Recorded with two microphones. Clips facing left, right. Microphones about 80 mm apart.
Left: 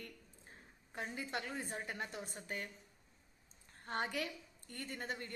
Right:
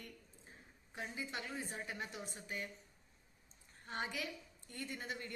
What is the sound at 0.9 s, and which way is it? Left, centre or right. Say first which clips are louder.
A woman's voice: left 2 dB; left.